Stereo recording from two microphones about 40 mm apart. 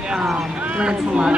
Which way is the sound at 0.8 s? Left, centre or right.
Right.